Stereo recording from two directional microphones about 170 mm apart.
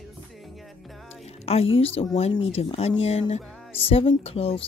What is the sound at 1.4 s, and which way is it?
Speech, 35° left (ahead or behind).